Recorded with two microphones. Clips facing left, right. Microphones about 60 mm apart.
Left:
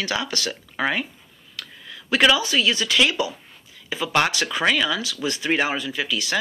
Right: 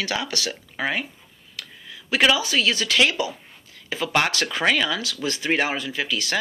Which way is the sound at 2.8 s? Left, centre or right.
Right.